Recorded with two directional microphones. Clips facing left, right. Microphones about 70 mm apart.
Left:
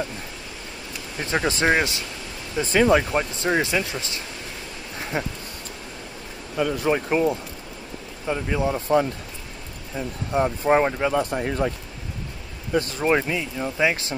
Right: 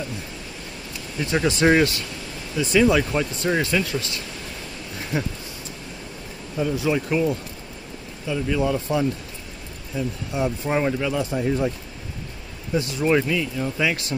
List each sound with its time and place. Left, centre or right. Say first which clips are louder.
1.2 s speech: right 2 dB; left
2.5 s speech: even; left
6.5 s speech: left 1 dB; left
7.1 s speech: left 1 dB; left
9.9 s speech: left 2 dB; left
11.1 s speech: even; left
12.7 s speech: left 1 dB; left
13.0 s speech: right 4 dB; left